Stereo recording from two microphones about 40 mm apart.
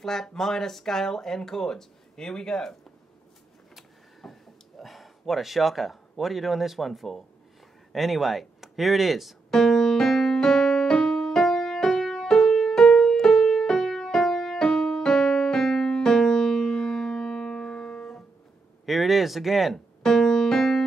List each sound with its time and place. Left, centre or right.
0.0 s speech: centre
3.7 s a sound: centre
7.9 s speech: centre
9.5 s music: centre
17.1 s music: centre
18.9 s a sound: centre
20.0 s music: centre